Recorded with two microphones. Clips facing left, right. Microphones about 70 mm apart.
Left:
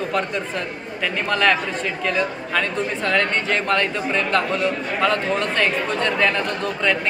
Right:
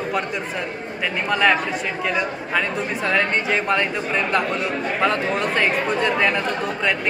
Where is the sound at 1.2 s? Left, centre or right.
Centre.